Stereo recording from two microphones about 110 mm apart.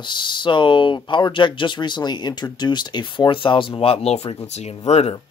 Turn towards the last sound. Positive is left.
turn(degrees=80)